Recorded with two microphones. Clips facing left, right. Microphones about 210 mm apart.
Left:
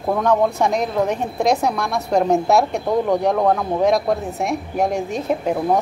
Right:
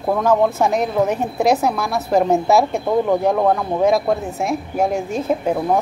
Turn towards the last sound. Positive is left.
turn(degrees=0)  # may be behind; listen again after turning